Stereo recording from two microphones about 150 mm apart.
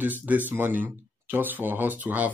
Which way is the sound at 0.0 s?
10° right (ahead or behind).